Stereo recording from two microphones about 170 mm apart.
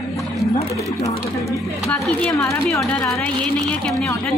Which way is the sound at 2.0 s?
15° left (ahead or behind).